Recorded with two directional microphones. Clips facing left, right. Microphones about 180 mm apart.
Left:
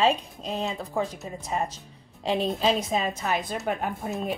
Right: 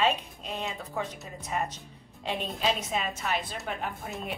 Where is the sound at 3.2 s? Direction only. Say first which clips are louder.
Left 4 dB; 40° left (ahead or behind).